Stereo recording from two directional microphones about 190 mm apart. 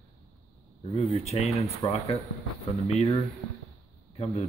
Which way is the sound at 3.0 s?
20° left (ahead or behind).